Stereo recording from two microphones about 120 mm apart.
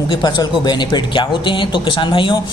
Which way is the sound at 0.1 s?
35° left (ahead or behind).